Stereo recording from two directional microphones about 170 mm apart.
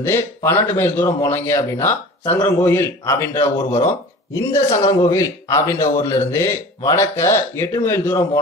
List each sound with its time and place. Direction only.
0.0 s a man's voice: 15° left (ahead or behind)